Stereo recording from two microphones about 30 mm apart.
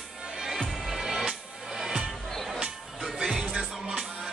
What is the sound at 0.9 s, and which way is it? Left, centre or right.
Music, centre.